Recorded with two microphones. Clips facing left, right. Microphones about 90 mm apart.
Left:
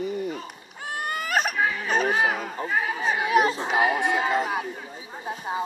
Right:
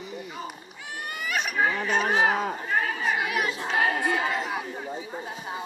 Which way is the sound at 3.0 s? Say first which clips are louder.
Left 5 dB; 25° left (ahead or behind).